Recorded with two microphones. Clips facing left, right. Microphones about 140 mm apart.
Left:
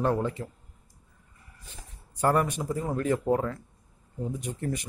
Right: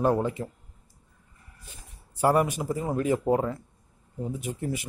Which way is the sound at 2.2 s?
10° right (ahead or behind).